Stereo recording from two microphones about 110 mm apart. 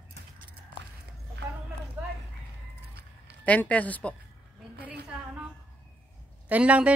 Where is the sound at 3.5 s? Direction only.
15° left (ahead or behind).